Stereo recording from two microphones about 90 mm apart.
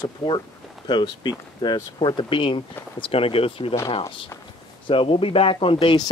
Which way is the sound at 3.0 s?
90° left.